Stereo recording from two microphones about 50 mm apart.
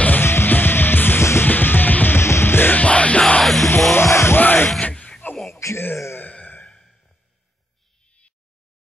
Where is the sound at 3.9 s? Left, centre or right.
Left.